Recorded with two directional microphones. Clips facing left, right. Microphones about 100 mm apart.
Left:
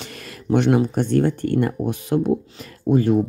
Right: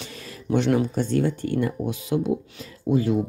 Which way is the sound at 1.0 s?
55° left (ahead or behind).